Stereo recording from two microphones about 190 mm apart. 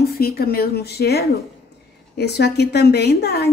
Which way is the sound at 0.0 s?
55° left (ahead or behind).